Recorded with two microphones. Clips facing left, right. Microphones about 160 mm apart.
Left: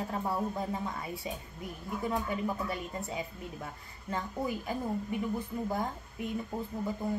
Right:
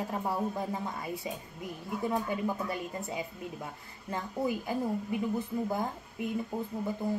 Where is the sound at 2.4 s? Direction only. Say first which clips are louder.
Right 1 dB; 15° right (ahead or behind).